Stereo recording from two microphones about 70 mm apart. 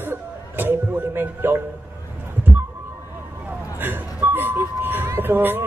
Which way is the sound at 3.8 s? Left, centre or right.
Right.